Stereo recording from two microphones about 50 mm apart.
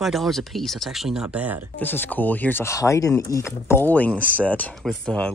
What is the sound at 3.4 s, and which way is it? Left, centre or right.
Speech, left.